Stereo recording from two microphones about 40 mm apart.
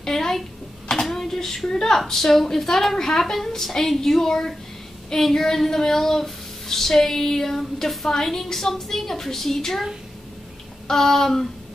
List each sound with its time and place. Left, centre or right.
0.0 s a sound: centre
1.1 s speech: centre
10.9 s speech: centre